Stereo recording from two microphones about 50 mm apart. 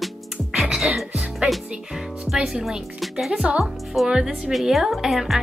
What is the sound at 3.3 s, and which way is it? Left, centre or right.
Speech, right.